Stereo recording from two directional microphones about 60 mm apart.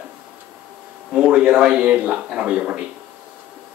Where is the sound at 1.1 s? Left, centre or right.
Centre.